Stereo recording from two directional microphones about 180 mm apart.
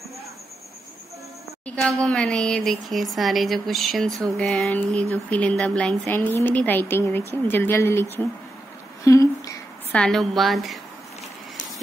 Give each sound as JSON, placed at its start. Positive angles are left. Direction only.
{"t": 1.8, "sound": "speech", "side_deg": 5}
{"t": 9.0, "sound": "a sound", "side_deg": 15}
{"t": 9.9, "sound": "speech", "side_deg": 0}